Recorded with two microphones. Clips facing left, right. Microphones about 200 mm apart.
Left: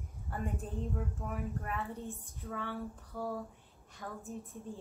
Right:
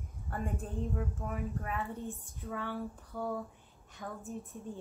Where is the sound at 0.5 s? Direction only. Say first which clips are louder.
Right 2 dB; centre (ahead or behind).